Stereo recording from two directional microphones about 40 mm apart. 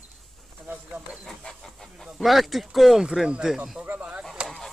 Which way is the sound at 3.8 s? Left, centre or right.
Right.